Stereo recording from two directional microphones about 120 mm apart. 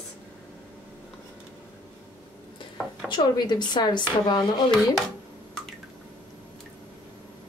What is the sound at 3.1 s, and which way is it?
Speech, 40° left (ahead or behind).